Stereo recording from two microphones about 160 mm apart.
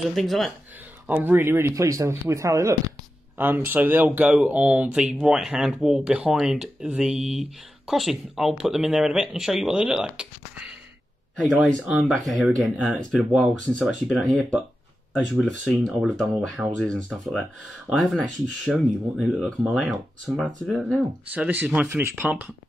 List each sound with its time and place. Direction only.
0.0 s speech: centre (ahead or behind)
1.0 s speech: 10° right (ahead or behind)